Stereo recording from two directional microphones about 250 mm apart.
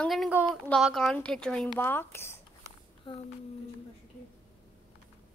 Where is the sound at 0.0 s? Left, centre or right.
Centre.